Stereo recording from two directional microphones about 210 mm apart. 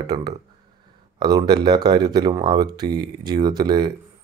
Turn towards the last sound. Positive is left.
turn(degrees=-20)  # may be behind; listen again after turning